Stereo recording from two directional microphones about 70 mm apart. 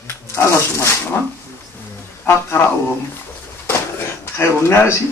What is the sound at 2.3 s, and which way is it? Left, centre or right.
Speech, left.